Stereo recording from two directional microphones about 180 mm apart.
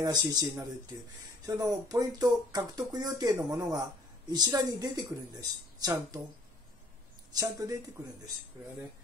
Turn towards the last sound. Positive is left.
turn(degrees=-20)  # may be behind; listen again after turning